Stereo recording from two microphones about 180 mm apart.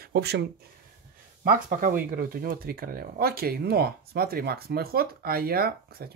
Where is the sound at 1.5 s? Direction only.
50° right (ahead or behind).